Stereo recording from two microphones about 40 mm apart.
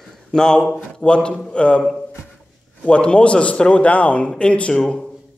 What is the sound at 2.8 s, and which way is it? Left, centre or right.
A man's voice, left.